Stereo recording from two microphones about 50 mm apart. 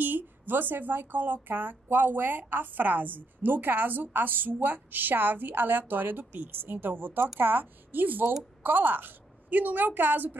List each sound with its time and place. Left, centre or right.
0.0 s a woman's voice: right